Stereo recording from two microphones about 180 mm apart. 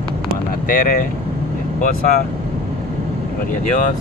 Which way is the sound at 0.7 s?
50° left (ahead or behind).